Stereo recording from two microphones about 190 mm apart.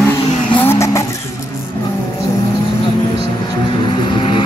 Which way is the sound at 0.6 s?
15° left (ahead or behind).